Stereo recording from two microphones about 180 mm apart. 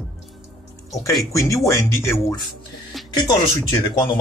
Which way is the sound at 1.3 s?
15° left (ahead or behind).